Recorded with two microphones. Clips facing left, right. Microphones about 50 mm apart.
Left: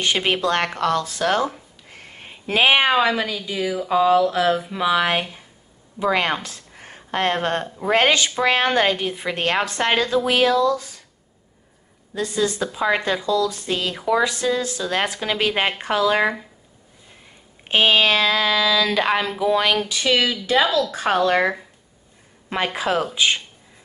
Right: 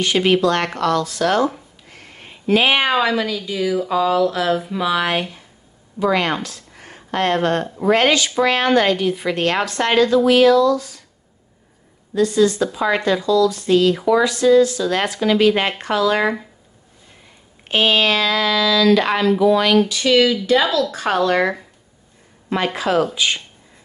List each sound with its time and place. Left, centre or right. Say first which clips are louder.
0.0 s a woman's voice: right 5 dB; left
12.2 s speech: right 7 dB; centre
13.9 s speech: right 4 dB; centre
14.2 s speech: right 8 dB; left
17.6 s a woman's voice: even; centre
22.8 s a woman's voice: right 2 dB; centre